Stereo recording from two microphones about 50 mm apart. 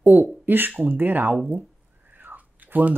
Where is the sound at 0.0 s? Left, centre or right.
Right.